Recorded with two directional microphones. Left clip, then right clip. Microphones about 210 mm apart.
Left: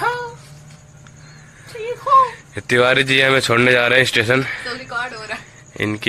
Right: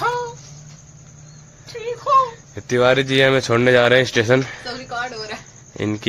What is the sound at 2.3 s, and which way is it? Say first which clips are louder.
Speech: left 5 dB; centre (ahead or behind).